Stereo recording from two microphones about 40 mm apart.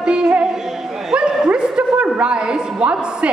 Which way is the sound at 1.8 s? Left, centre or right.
Right.